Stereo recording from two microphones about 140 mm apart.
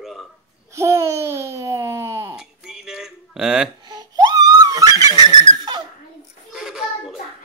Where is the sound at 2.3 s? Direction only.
5° right (ahead or behind).